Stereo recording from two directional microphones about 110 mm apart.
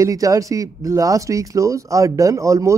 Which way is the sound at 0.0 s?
30° right (ahead or behind).